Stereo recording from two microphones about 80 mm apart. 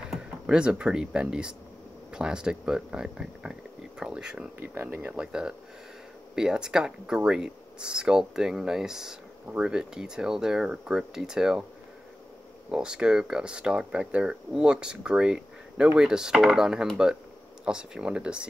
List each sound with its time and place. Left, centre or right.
0.1 s speech: centre
4.6 s speech: right
5.1 s speech: centre
12.7 s speech: centre